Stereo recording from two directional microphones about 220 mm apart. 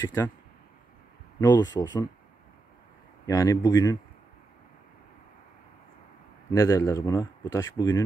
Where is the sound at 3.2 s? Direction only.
15° left (ahead or behind).